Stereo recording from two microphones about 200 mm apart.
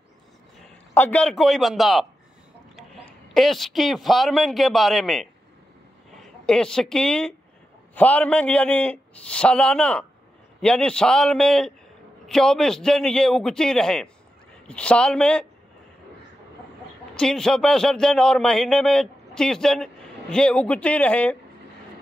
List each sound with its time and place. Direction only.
0.9 s a man's voice: 5° left (ahead or behind)
17.1 s a man's voice: 5° left (ahead or behind)